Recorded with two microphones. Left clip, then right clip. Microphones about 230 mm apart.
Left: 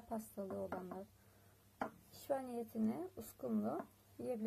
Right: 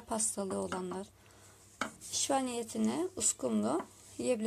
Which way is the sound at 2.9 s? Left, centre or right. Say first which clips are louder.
Right 12 dB; right.